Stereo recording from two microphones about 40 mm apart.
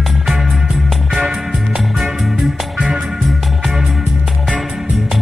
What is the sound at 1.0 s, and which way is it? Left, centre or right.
Music, centre.